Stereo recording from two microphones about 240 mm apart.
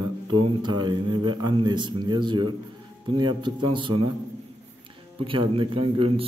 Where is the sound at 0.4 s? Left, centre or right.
Centre.